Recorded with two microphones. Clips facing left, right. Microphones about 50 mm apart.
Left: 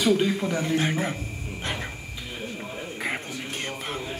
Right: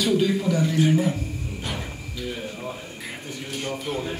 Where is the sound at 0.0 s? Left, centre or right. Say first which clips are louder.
Right 1 dB; left.